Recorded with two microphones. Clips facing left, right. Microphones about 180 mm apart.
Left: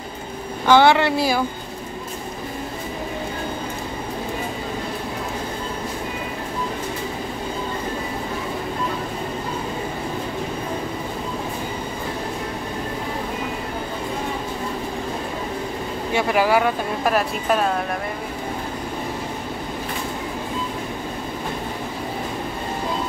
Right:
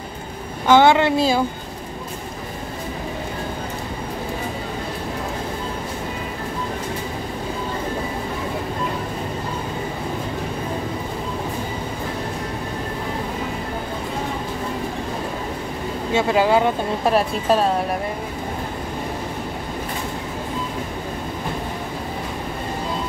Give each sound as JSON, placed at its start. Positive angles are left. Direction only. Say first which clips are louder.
{"t": 0.7, "sound": "speech", "louder": "right 1 dB", "side_deg": -20}
{"t": 16.1, "sound": "speech", "louder": "right 2 dB", "side_deg": -25}